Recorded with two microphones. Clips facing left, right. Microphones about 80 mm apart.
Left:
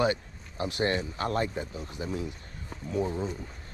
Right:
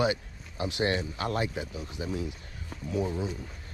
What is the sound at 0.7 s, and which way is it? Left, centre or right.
Speech, centre.